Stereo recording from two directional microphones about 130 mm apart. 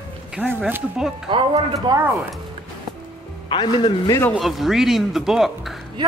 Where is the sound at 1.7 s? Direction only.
30° right (ahead or behind).